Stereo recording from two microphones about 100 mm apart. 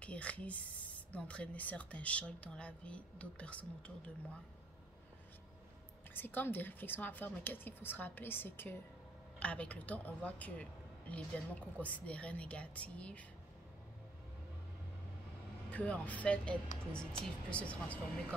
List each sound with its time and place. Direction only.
0.0 s speech: 15° left (ahead or behind)
6.1 s a woman's voice: 20° left (ahead or behind)
15.7 s speech: 15° left (ahead or behind)